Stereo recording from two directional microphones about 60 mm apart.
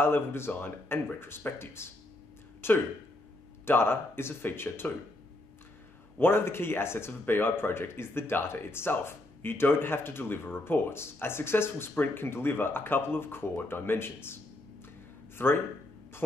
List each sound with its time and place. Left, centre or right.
0.0 s speech: left
6.1 s speech: left